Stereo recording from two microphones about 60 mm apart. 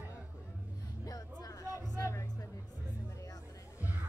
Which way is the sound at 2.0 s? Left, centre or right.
Left.